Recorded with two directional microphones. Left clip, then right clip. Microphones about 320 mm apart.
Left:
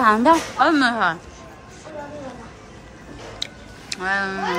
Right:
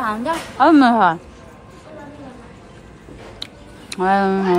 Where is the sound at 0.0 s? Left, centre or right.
Left.